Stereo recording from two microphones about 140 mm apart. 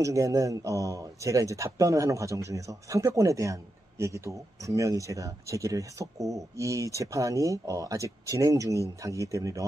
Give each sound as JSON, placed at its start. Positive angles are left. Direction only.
{"t": 0.0, "sound": "a man's voice", "side_deg": -25}